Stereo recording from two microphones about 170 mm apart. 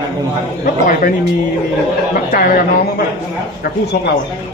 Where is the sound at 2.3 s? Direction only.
60° left (ahead or behind).